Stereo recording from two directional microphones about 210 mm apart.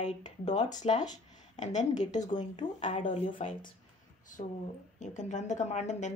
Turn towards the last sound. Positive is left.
turn(degrees=35)  # may be behind; listen again after turning